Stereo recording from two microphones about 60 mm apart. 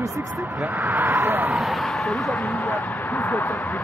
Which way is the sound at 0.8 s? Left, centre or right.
Right.